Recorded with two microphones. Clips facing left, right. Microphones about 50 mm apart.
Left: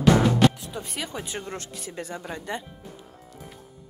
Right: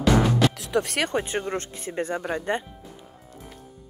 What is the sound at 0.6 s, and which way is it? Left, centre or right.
Speech, right.